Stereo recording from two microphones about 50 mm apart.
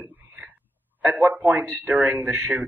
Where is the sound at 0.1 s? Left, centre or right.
Right.